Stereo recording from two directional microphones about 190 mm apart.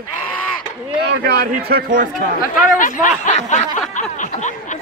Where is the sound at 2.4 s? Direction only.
45° left (ahead or behind).